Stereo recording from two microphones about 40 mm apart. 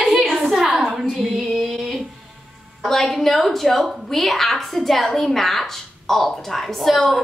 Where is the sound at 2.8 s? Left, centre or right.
Centre.